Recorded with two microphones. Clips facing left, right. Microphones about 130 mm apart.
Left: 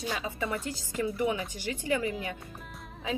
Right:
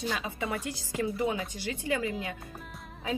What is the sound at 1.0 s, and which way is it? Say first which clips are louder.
Speech: left 1 dB; 25° right (ahead or behind).